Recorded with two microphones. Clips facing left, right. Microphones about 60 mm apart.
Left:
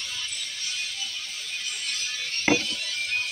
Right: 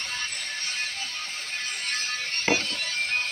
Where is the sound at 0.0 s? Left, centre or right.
Right.